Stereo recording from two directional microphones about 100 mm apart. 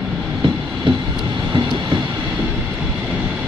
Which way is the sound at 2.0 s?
10° right (ahead or behind).